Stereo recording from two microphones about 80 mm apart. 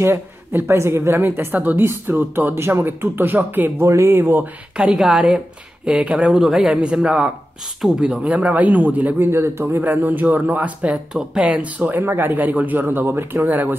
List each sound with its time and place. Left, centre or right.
0.0 s a man's voice: right
4.7 s a man's voice: centre; by 13.7 s right